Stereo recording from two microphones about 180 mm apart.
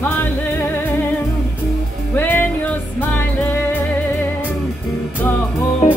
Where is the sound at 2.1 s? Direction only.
10° left (ahead or behind).